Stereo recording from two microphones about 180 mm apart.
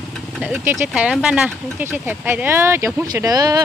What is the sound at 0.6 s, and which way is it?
Speech, 10° right (ahead or behind).